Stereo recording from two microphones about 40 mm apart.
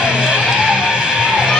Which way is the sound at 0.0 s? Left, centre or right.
Right.